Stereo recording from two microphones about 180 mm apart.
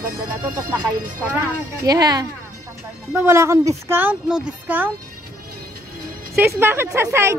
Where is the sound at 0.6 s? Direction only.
15° right (ahead or behind).